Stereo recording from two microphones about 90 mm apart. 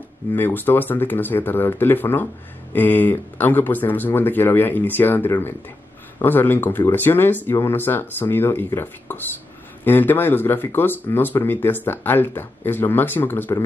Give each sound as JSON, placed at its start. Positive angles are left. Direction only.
{"t": 0.3, "sound": "speech", "side_deg": 25}